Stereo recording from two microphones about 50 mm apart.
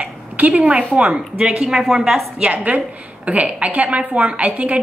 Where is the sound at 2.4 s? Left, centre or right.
Right.